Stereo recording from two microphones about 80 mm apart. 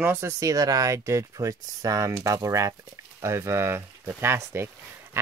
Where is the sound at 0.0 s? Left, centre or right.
Right.